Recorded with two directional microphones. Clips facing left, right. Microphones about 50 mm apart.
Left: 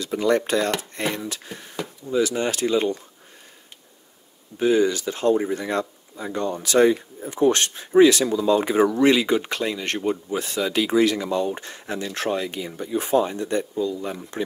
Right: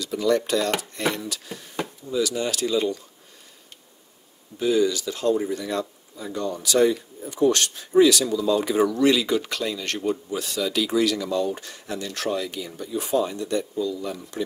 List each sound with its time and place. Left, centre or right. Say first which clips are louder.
0.0 s speech: left 1 dB; left
1.0 s speech: even; left
4.6 s speech: left 2 dB; left